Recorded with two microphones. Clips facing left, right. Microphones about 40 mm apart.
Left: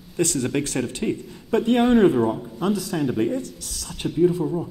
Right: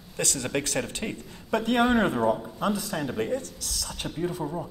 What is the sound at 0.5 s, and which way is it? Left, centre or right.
Speech, centre.